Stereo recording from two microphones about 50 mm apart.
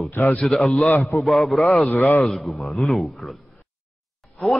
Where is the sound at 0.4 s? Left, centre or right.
Centre.